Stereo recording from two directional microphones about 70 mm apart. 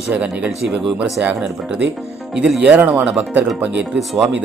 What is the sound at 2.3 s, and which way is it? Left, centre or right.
Speech, centre.